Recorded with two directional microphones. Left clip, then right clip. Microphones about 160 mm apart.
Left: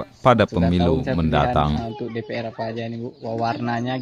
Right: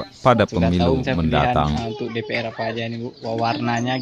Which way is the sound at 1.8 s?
45° left (ahead or behind).